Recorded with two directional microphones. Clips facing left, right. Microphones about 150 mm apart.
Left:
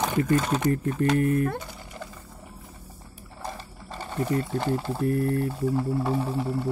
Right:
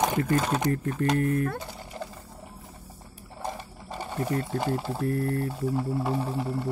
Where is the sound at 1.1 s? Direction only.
15° left (ahead or behind).